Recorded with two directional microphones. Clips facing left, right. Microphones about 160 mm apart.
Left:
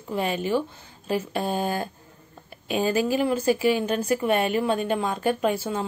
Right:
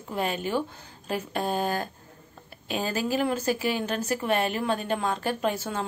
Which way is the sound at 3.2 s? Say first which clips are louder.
Left 3 dB; 10° left (ahead or behind).